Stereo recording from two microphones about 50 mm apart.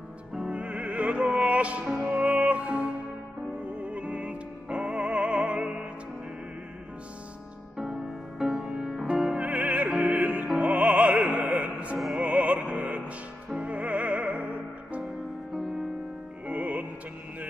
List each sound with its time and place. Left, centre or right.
0.3 s music: centre
7.7 s music: centre
9.5 s music: right
9.8 s music: centre
10.1 s music: right
10.6 s opera: right
11.6 s music: right
12.2 s opera: right
12.6 s music: right
16.4 s music: right